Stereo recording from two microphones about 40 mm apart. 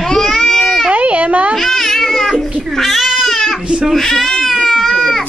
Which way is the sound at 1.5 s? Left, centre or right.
Centre.